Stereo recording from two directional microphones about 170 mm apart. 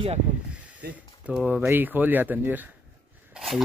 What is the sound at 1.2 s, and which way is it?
Speech, 10° right (ahead or behind).